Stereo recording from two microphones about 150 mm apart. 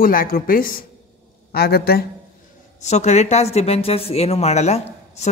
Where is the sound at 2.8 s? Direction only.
50° left (ahead or behind).